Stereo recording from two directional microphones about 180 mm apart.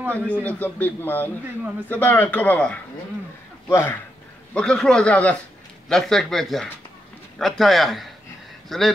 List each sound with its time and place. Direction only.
0.1 s a man's voice: 10° left (ahead or behind)